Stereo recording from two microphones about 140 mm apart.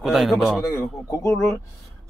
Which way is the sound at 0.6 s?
25° left (ahead or behind).